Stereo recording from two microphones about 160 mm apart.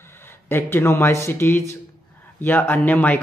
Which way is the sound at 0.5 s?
15° left (ahead or behind).